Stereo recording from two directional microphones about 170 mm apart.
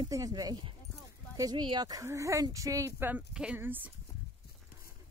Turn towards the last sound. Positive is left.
turn(degrees=-10)  # may be behind; listen again after turning